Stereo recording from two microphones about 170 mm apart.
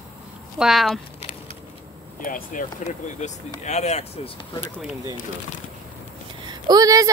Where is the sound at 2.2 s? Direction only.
55° left (ahead or behind).